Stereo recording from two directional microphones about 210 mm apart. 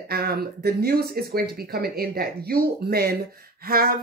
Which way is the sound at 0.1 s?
50° right (ahead or behind).